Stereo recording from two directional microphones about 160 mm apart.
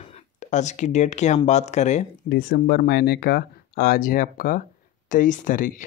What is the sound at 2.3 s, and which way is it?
Speech, 80° left.